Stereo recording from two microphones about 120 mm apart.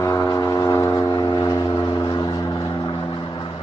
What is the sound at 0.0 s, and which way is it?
Vehicle, 30° left (ahead or behind).